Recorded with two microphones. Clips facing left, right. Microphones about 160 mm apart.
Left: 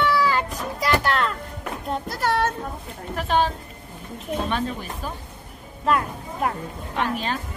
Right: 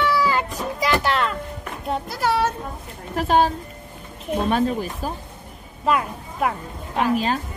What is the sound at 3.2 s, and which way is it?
Speech, 40° right (ahead or behind).